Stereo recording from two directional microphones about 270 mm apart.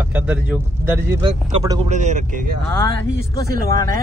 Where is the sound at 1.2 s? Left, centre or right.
Centre.